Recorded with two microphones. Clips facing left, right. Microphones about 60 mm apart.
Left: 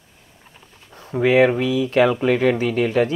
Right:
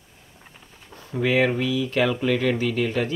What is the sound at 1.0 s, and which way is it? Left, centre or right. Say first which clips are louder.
Speech: left 6 dB; left.